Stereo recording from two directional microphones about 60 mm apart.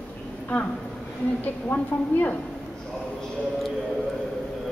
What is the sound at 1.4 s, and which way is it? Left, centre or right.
Speech, left.